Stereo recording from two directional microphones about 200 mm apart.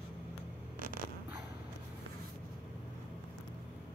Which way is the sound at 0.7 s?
45° right (ahead or behind).